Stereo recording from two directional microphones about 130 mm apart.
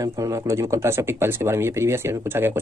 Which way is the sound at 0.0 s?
25° right (ahead or behind).